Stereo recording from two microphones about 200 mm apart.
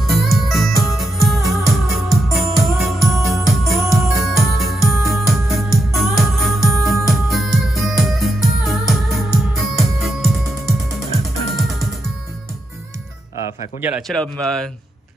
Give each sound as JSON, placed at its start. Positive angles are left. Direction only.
{"t": 0.0, "sound": "music", "side_deg": 0}
{"t": 11.5, "sound": "music", "side_deg": 0}
{"t": 13.7, "sound": "a man's voice", "side_deg": -5}
{"t": 14.2, "sound": "speech", "side_deg": 5}